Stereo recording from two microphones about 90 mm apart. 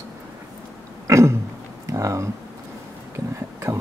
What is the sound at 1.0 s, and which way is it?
Throat clearing, 30° right (ahead or behind).